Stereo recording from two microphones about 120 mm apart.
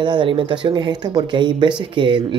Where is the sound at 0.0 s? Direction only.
40° right (ahead or behind).